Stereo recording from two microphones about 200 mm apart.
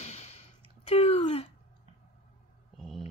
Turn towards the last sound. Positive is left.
turn(degrees=0)  # may be behind; listen again after turning